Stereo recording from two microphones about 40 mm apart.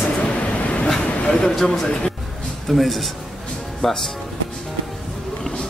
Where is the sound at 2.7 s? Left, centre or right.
Centre.